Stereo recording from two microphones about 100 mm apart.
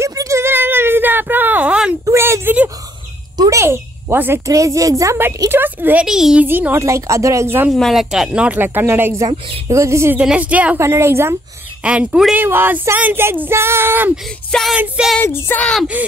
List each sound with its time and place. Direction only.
0.0 s a sound: 35° right (ahead or behind); by 2.0 s 10° right (ahead or behind)
2.0 s a sound: 30° right (ahead or behind)
3.3 s a child's voice: 30° right (ahead or behind)
4.5 s a woman's voice: 35° right (ahead or behind)
6.0 s a child's voice: 5° right (ahead or behind)
6.4 s speech: 20° right (ahead or behind)
7.7 s speech: centre (ahead or behind); by 10.1 s 30° right (ahead or behind)
10.2 s speech: 15° right (ahead or behind)
10.8 s speech: 25° right (ahead or behind)
11.8 s speech: 15° right (ahead or behind)
14.5 s child singing: centre (ahead or behind)
15.2 s speech: 25° left (ahead or behind)
16.0 s speech: 15° right (ahead or behind)